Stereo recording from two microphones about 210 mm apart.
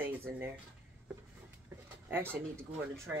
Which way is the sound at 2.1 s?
10° right (ahead or behind).